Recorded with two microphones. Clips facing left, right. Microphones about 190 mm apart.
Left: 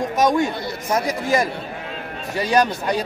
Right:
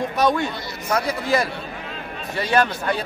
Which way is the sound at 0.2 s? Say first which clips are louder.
Left 3 dB; 15° left (ahead or behind).